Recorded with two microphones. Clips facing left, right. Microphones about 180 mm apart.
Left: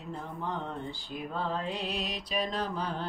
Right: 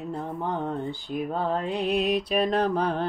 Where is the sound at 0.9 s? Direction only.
55° right (ahead or behind).